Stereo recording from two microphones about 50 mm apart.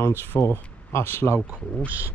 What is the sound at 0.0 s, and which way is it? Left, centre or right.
Speech, left.